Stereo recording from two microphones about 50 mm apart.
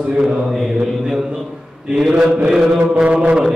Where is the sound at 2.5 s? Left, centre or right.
Centre.